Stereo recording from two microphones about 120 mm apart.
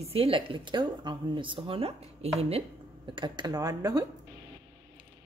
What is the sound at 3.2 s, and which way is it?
Speech, 35° right (ahead or behind).